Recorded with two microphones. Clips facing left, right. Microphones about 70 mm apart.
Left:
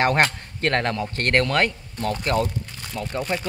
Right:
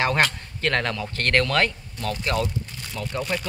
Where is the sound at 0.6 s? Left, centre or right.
Left.